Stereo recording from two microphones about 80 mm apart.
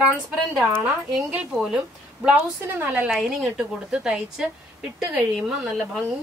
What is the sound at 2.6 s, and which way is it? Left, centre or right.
Speech, right.